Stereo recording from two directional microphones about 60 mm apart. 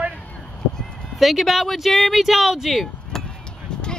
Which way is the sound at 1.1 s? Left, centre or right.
Centre.